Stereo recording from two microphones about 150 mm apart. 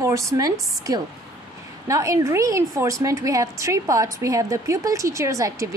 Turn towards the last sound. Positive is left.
turn(degrees=-20)  # may be behind; listen again after turning